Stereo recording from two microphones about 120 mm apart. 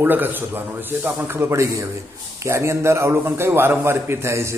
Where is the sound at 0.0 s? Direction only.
15° right (ahead or behind).